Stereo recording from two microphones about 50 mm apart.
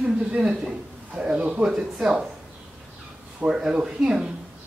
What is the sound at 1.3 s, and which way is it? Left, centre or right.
Speech, right.